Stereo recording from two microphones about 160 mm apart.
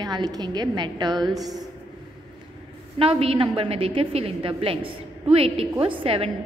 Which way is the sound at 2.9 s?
35° right (ahead or behind).